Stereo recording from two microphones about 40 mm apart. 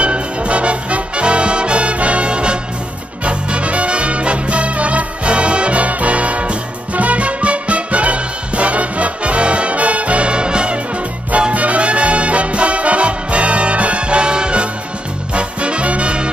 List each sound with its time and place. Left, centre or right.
0.0 s music: right
11.3 s music: right